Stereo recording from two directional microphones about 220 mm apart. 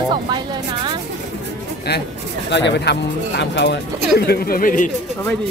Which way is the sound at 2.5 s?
50° left (ahead or behind).